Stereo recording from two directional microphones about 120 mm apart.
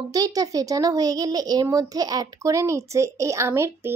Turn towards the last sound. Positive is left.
turn(degrees=-20)  # may be behind; listen again after turning